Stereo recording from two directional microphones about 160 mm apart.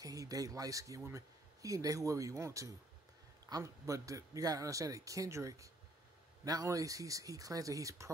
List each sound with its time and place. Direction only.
0.0 s speech: 20° right (ahead or behind)